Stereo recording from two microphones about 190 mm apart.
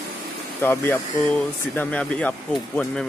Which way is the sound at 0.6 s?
10° left (ahead or behind).